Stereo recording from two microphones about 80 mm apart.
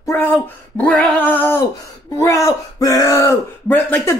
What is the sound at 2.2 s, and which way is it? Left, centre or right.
Speech, left.